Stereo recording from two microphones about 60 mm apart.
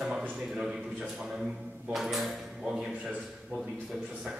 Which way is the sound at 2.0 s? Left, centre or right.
Centre.